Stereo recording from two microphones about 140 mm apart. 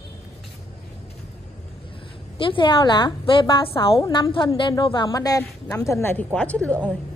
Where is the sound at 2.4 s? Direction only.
35° left (ahead or behind); by 6.9 s 5° left (ahead or behind).